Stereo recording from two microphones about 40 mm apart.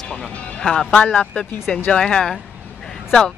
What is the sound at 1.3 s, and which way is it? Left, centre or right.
Speech, centre.